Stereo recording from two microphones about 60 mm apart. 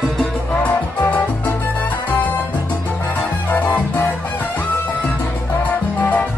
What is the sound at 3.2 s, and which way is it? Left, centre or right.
Music, left.